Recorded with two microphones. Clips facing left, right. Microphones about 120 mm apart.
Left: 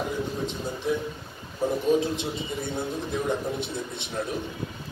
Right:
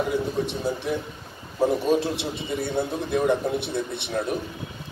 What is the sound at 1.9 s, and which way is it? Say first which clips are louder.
A man's voice: right 1 dB; 80° right.